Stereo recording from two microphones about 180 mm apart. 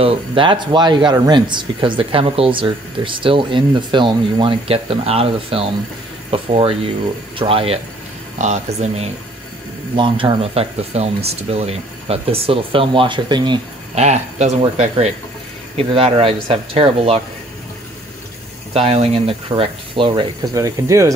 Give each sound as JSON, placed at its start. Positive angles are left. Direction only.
{"t": 0.0, "sound": "speech", "side_deg": -30}
{"t": 9.9, "sound": "speech", "side_deg": -25}
{"t": 13.9, "sound": "speech", "side_deg": -35}
{"t": 18.7, "sound": "speech", "side_deg": -35}